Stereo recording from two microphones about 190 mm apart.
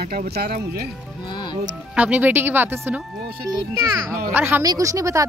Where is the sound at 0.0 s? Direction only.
55° right (ahead or behind).